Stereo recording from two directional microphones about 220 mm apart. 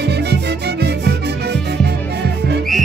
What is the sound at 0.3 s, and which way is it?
Music, 50° right (ahead or behind).